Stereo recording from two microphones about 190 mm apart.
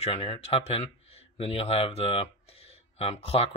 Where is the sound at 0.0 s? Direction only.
30° left (ahead or behind).